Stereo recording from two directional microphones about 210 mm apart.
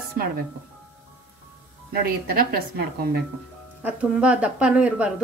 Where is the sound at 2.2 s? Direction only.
45° right (ahead or behind).